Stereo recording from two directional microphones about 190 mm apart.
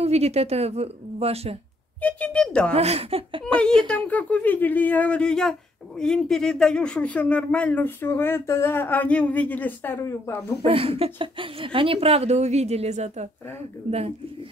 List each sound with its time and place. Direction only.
0.0 s speech: 35° right (ahead or behind)
2.0 s speech: 5° left (ahead or behind)
2.7 s speech: 30° right (ahead or behind)
3.5 s speech: 5° left (ahead or behind)
10.6 s speech: 30° right (ahead or behind)